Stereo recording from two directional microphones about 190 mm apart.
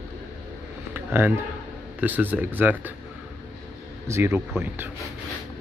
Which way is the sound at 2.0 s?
10° right (ahead or behind).